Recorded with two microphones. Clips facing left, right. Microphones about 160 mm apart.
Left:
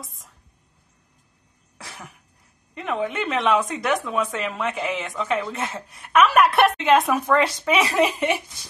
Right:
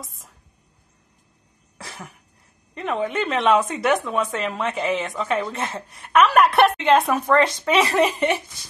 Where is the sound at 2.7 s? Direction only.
Centre (ahead or behind).